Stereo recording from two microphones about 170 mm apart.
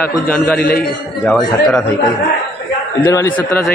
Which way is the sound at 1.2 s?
5° left (ahead or behind).